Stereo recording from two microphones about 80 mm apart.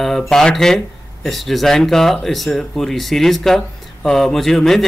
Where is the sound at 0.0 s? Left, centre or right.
Centre.